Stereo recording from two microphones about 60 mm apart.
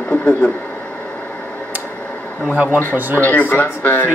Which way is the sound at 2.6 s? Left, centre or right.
Left.